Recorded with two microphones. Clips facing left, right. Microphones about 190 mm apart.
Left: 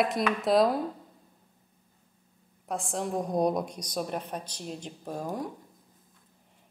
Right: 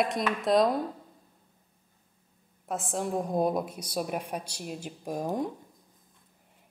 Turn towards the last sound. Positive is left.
turn(degrees=-20)  # may be behind; listen again after turning